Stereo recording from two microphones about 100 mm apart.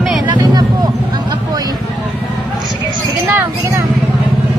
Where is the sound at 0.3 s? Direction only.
45° right (ahead or behind).